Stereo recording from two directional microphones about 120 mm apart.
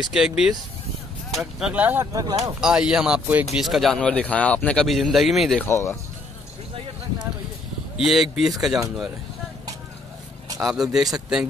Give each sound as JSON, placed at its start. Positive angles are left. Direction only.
{"t": 0.1, "sound": "speech", "side_deg": -5}
{"t": 1.7, "sound": "speech", "side_deg": -15}
{"t": 2.1, "sound": "speech", "side_deg": -30}
{"t": 2.6, "sound": "speech", "side_deg": -5}
{"t": 5.6, "sound": "speech", "side_deg": 20}
{"t": 8.0, "sound": "speech", "side_deg": -5}
{"t": 10.6, "sound": "speech", "side_deg": -5}